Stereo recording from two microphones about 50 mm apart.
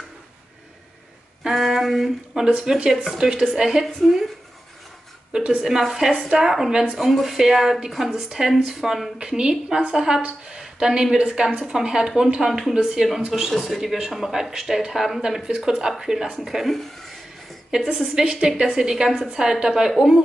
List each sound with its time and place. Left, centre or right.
1.5 s a sound: centre
2.4 s a woman's voice: centre
5.3 s a sound: centre
5.7 s a woman's voice: centre
9.2 s a woman's voice: centre
10.6 s a sound: centre
11.1 s a woman's voice: centre
17.6 s a woman's voice: centre
18.2 s a woman's voice: right